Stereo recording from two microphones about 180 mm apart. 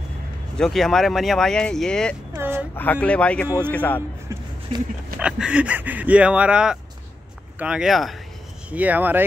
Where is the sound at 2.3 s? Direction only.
10° right (ahead or behind).